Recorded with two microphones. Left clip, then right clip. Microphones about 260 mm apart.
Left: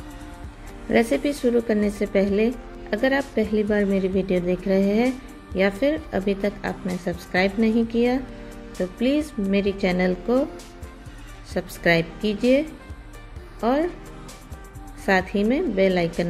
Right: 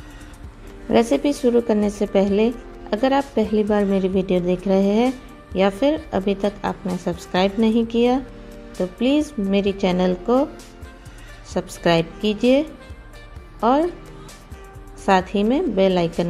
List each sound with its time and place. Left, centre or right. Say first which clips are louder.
0.8 s a woman's voice: right 3 dB; centre
11.5 s a woman's voice: right 2 dB; centre
15.0 s a woman's voice: right 3 dB; centre